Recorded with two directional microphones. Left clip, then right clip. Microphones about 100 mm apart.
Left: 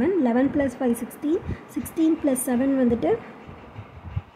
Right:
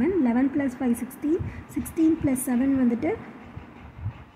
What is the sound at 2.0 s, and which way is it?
A woman's voice, 10° left (ahead or behind).